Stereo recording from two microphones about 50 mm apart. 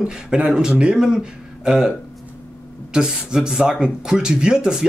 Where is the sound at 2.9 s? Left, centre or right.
Centre.